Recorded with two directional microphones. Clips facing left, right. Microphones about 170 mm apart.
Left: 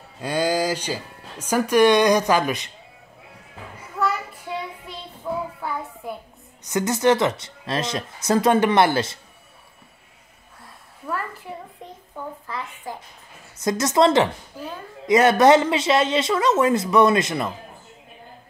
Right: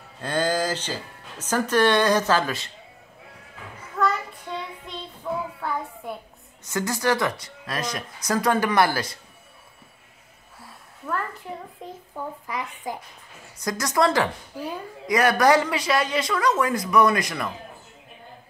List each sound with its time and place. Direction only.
0.2 s speech: 10° left (ahead or behind)
4.0 s child singing: 5° left (ahead or behind)
5.6 s a sound: 5° left (ahead or behind)
6.0 s a woman's voice: centre (ahead or behind)
6.6 s speech: 20° left (ahead or behind)
11.1 s a sound: 5° left (ahead or behind)
12.4 s speech: 15° right (ahead or behind)
13.6 s speech: 25° left (ahead or behind)